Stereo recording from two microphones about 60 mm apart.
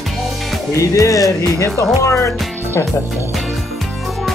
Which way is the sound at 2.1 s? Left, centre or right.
Left.